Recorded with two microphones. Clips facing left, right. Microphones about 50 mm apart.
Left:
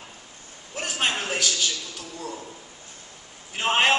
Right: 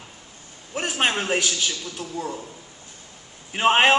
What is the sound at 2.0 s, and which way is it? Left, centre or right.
Speech, centre.